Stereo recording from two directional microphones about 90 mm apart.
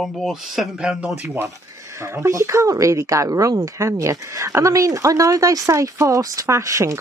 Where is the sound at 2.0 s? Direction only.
30° right (ahead or behind).